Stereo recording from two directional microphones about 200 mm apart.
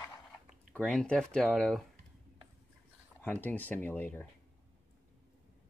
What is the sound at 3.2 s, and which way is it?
Speech, 10° left (ahead or behind).